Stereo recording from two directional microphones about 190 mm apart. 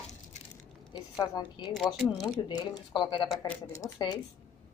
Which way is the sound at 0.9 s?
25° left (ahead or behind).